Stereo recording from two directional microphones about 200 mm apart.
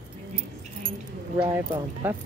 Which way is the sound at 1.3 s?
10° right (ahead or behind).